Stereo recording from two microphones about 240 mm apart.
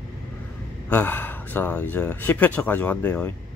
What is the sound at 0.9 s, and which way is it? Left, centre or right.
Speech, centre.